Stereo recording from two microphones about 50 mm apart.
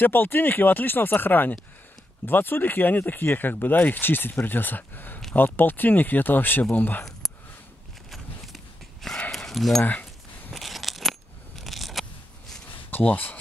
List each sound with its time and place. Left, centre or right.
0.0 s speech: left
9.3 s dog: centre
10.5 s coin: centre
13.0 s speech: left